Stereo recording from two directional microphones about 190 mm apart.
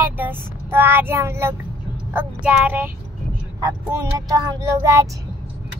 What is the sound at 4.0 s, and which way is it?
Child singing, 15° right (ahead or behind).